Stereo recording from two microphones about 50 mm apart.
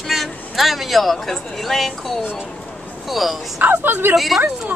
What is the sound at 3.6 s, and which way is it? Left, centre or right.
Speech, right.